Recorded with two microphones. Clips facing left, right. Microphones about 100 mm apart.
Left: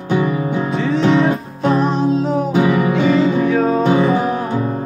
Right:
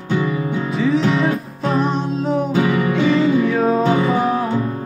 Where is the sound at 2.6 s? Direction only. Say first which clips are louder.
Left 5 dB; 20° left (ahead or behind).